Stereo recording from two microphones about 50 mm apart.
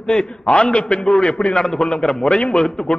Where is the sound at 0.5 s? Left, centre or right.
Left.